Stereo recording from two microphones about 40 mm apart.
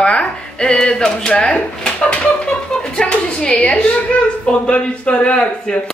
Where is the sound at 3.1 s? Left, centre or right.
Left.